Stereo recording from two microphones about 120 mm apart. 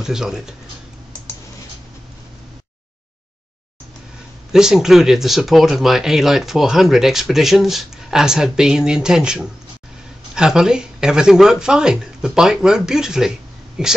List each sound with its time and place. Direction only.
0.0 s speech: 5° right (ahead or behind)
4.5 s speech: 5° right (ahead or behind)